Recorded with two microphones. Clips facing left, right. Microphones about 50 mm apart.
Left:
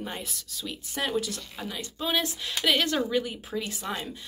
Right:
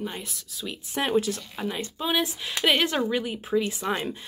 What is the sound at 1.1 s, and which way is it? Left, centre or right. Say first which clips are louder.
Speech: right 5 dB; right.